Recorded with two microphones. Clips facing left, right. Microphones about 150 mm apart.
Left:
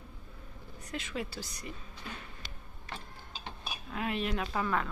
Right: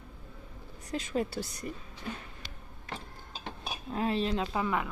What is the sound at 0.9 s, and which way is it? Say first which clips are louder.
Speech: right 6 dB; 40° right (ahead or behind).